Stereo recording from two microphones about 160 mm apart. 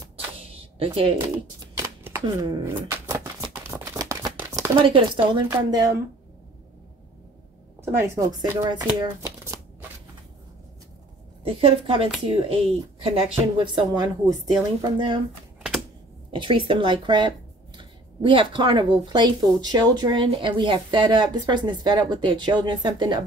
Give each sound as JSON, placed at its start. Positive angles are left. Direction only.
{"t": 0.5, "sound": "a sound", "side_deg": -35}
{"t": 2.6, "sound": "a sound", "side_deg": -15}
{"t": 4.7, "sound": "speech", "side_deg": -35}
{"t": 7.8, "sound": "speech", "side_deg": -20}
{"t": 9.2, "sound": "shuffling cards", "side_deg": -15}
{"t": 11.4, "sound": "speech", "side_deg": -35}
{"t": 13.7, "sound": "speech", "side_deg": -25}
{"t": 16.3, "sound": "speech", "side_deg": -30}